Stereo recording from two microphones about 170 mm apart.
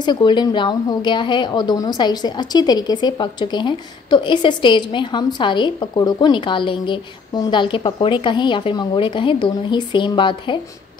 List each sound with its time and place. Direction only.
0.0 s a woman's voice: 25° left (ahead or behind)